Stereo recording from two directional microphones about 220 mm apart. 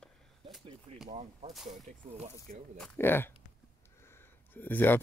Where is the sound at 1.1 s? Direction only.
30° right (ahead or behind).